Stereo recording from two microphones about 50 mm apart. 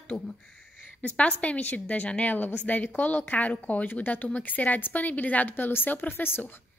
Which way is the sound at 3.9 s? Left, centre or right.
Left.